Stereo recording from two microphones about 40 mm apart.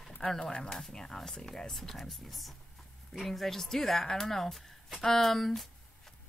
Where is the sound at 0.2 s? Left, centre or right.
Centre.